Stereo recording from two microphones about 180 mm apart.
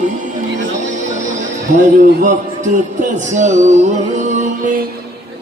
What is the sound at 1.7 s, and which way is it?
Music, 45° right (ahead or behind).